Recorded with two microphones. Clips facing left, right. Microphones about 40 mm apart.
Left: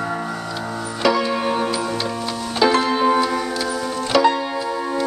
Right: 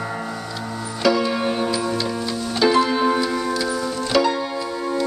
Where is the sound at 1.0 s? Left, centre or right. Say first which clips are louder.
Even; centre.